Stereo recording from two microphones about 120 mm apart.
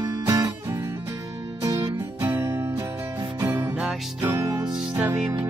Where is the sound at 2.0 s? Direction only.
20° right (ahead or behind).